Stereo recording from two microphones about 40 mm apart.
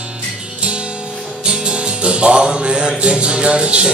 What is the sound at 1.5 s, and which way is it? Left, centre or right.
Music, right.